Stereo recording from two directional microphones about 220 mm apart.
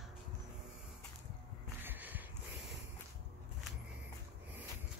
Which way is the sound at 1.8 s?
10° right (ahead or behind).